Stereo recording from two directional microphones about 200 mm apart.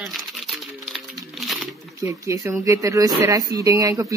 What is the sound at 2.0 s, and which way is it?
Speech, 15° right (ahead or behind).